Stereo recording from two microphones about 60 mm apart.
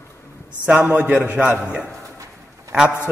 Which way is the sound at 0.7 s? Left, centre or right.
Right.